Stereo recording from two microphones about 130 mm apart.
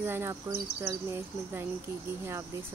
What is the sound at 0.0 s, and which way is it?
Speech, 15° right (ahead or behind).